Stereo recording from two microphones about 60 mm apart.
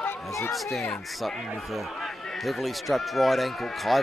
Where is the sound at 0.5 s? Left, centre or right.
Centre.